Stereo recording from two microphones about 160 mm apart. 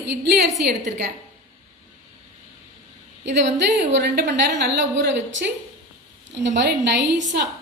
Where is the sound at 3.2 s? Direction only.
90° right.